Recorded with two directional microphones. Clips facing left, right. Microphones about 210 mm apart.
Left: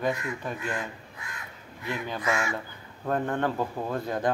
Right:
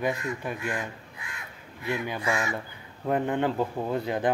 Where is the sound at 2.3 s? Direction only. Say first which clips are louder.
Left 1 dB; 15° right (ahead or behind).